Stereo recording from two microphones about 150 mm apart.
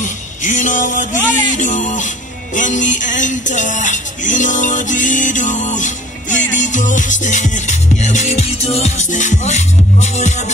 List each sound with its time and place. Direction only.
0.0 s music: 55° left (ahead or behind)